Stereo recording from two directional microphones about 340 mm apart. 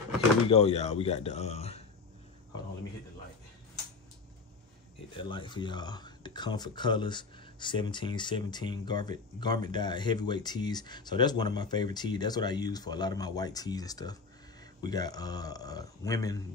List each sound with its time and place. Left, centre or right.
0.5 s speech: centre
5.1 s speech: centre